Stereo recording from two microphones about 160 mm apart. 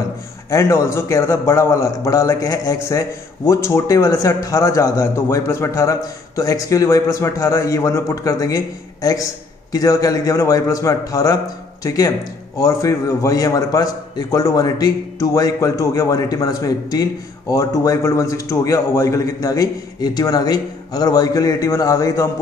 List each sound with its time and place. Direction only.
0.5 s a man's voice: 20° left (ahead or behind)